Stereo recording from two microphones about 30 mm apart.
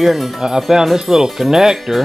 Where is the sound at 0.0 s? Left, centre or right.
Centre.